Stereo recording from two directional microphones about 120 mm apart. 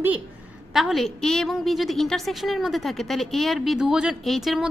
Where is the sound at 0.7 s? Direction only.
Centre (ahead or behind).